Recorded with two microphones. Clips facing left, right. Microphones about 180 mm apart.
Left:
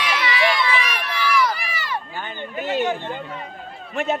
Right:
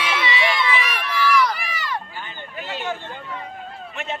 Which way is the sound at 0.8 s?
Centre (ahead or behind).